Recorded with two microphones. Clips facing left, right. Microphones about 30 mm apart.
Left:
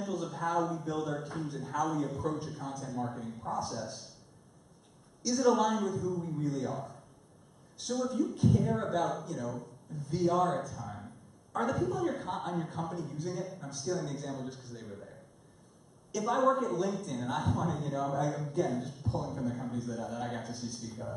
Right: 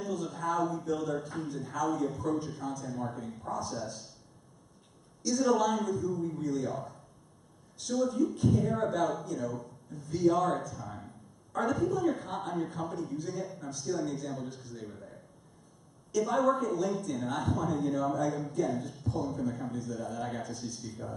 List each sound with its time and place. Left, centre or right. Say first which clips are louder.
0.0 s a sound: even; centre
0.9 s speech: right 1 dB; centre
5.2 s a woman's voice: even; centre
7.8 s a man's voice: right 3 dB; centre
16.2 s speech: right 1 dB; centre
18.9 s a sound: right 1 dB; left
19.2 s a man's voice: right 2 dB; centre
20.5 s a man's voice: right 1 dB; left